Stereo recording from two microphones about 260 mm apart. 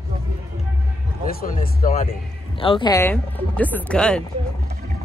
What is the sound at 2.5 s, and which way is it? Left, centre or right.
Speech, centre.